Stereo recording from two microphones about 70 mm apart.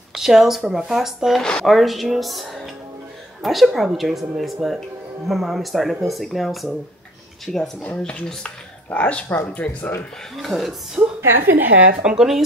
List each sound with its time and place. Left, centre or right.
0.1 s speech: centre
1.4 s speech: centre
1.7 s speech: centre; by 9.8 s left
10.3 s speech: centre
11.0 s a woman's voice: right
12.0 s speech: centre